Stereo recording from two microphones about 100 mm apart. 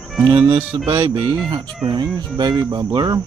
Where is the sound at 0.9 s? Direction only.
70° right (ahead or behind).